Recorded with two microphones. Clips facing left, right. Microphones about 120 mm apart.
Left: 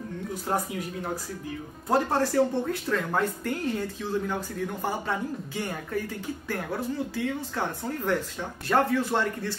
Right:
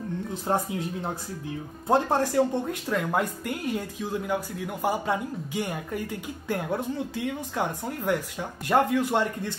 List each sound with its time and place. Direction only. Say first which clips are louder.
0.3 s speech: right 2 dB; 25° right (ahead or behind)
1.9 s speech: right 1 dB; 15° right (ahead or behind)